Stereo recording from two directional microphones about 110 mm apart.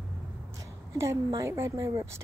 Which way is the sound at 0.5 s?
30° right (ahead or behind).